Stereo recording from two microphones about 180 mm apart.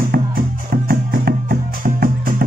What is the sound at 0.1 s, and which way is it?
Music, 55° right (ahead or behind).